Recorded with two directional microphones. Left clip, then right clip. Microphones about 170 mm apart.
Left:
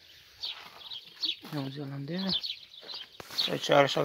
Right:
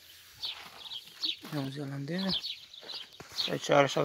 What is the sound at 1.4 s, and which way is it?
Bird, 5° right (ahead or behind).